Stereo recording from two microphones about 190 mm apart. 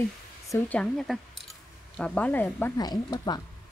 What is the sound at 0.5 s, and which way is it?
Speech, 5° left (ahead or behind).